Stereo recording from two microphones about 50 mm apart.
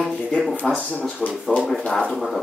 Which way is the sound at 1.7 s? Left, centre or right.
Centre.